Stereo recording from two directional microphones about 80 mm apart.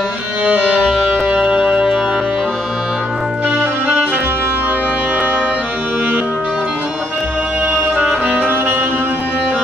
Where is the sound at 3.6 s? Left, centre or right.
Right.